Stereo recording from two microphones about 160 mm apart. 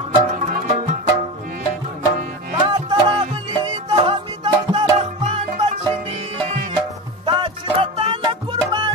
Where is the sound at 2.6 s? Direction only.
25° right (ahead or behind).